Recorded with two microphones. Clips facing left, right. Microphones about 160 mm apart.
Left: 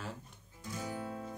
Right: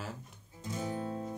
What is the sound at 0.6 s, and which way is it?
Music, 25° right (ahead or behind).